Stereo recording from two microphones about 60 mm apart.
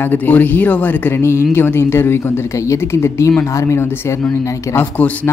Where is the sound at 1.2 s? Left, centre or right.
Left.